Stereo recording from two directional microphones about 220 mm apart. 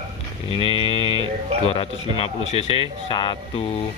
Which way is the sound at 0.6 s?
25° left (ahead or behind).